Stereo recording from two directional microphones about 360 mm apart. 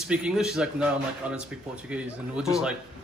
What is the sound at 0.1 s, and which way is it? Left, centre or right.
Speech, centre.